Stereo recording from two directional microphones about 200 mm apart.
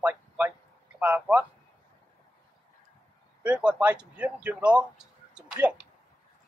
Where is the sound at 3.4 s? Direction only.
5° right (ahead or behind).